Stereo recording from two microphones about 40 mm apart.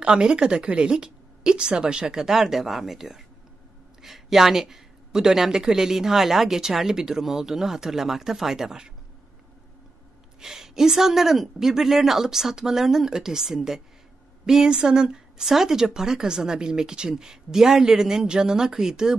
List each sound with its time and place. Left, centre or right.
0.0 s a woman's voice: right
10.4 s speech: centre